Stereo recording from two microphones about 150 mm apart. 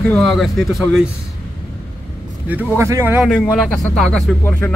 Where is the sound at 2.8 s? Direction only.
20° right (ahead or behind).